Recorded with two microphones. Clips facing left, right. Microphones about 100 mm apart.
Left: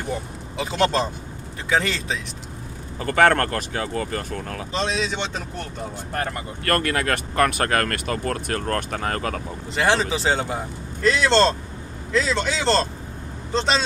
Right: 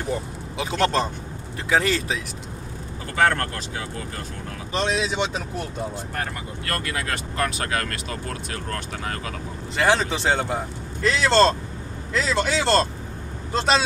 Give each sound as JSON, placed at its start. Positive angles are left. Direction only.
{"t": 0.6, "sound": "a man's voice", "side_deg": 0}
{"t": 3.1, "sound": "speech", "side_deg": 60}
{"t": 4.7, "sound": "speech", "side_deg": -10}
{"t": 6.1, "sound": "speech", "side_deg": 55}
{"t": 9.8, "sound": "a man's voice", "side_deg": 0}